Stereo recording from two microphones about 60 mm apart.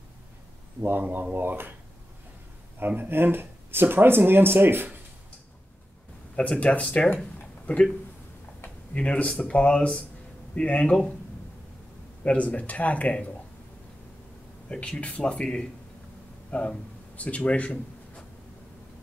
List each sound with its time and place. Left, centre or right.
0.7 s speech: right
3.0 s speech: right
6.3 s speech: centre
8.9 s speech: centre
12.3 s speech: left
14.7 s speech: centre